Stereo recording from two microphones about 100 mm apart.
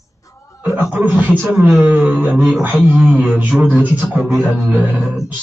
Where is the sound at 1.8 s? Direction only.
15° right (ahead or behind).